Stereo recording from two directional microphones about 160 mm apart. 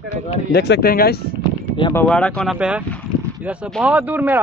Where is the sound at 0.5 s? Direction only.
90° left; by 1.3 s 75° left (ahead or behind).